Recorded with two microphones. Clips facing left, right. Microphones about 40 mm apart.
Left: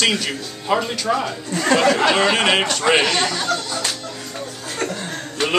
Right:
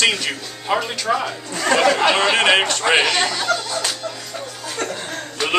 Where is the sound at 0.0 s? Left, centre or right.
Centre.